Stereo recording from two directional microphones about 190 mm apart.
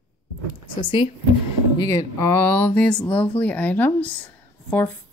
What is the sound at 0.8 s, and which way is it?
Speech, 30° left (ahead or behind).